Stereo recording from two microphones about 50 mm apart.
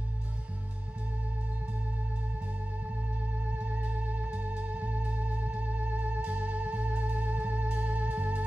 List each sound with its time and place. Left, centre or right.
3.5 s music: right